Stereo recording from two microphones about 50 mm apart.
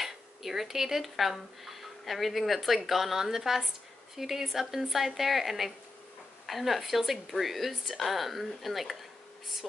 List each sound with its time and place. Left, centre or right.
0.0 s speech: centre